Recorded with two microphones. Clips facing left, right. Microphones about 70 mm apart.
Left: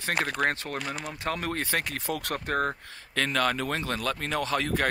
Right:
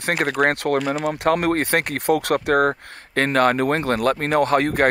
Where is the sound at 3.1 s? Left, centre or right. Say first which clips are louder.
Right 9 dB; right.